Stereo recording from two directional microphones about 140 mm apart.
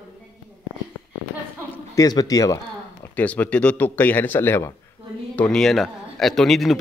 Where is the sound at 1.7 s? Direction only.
25° left (ahead or behind).